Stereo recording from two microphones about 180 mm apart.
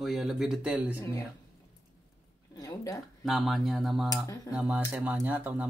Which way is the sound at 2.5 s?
20° left (ahead or behind).